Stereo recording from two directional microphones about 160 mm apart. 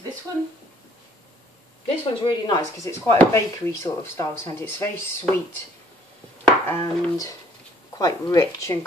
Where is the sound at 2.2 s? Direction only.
30° left (ahead or behind).